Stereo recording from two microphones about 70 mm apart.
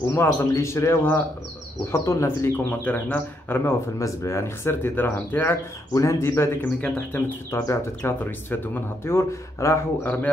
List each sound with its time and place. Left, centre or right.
0.1 s a man's voice: left
2.8 s speech: left
4.0 s speech: left
5.9 s speech: left
7.6 s speech: left
8.2 s speech: left
10.0 s speech: left